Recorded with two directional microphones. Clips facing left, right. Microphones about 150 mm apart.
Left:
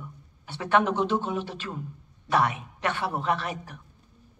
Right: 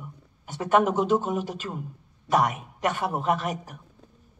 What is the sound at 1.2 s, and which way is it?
Speech, 5° right (ahead or behind).